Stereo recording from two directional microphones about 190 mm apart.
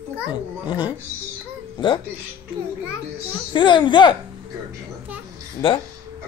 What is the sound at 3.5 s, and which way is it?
Speech, 25° left (ahead or behind).